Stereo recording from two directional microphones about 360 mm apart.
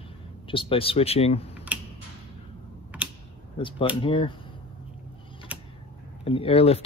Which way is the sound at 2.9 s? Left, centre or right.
Centre.